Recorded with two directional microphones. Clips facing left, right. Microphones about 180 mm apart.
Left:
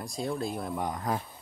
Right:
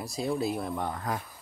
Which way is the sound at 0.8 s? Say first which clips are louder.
Left 1 dB; 15° left (ahead or behind).